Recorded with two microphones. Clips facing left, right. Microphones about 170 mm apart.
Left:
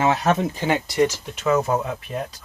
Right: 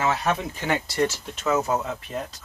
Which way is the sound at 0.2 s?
40° left (ahead or behind).